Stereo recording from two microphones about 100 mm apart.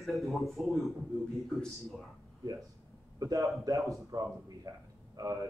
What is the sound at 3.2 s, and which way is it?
A man's voice, 35° right (ahead or behind).